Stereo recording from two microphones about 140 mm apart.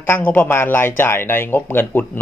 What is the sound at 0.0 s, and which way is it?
A man's voice, 15° left (ahead or behind).